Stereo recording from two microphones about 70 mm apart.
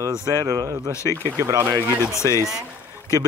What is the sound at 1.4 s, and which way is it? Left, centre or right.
Speech, right.